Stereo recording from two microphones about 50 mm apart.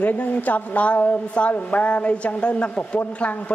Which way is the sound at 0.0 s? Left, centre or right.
Left.